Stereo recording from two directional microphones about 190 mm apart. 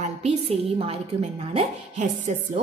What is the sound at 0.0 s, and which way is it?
A woman's voice, 35° right (ahead or behind).